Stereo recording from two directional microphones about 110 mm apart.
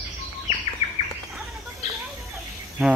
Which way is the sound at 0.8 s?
90° left.